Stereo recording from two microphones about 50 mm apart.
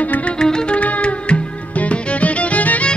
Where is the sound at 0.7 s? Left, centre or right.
Left.